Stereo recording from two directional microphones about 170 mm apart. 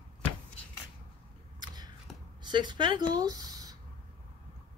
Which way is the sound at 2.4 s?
25° right (ahead or behind).